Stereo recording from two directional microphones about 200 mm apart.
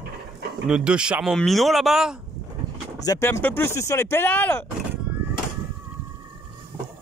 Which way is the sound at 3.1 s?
15° left (ahead or behind).